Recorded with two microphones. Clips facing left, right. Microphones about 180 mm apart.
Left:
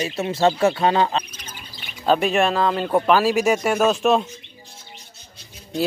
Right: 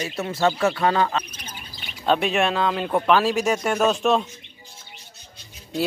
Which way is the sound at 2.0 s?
Centre (ahead or behind).